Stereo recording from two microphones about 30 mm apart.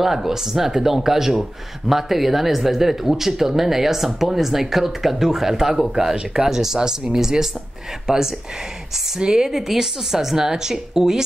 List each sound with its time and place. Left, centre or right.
0.0 s speech: centre
9.5 s a woman's voice: centre